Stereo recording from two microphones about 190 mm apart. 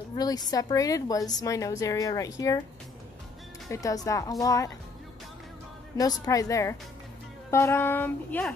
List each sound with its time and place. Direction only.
0.1 s a woman's voice: 20° left (ahead or behind)
3.7 s speech: 20° left (ahead or behind)
5.9 s speech: 20° left (ahead or behind)